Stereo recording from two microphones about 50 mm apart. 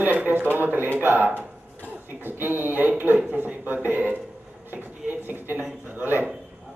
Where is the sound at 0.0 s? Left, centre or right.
Right.